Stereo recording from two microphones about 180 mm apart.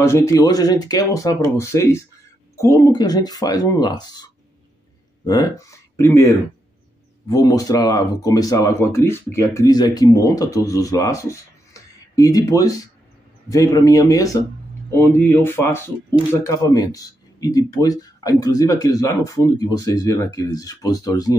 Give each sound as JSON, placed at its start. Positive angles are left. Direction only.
{"t": 0.0, "sound": "speech", "side_deg": 15}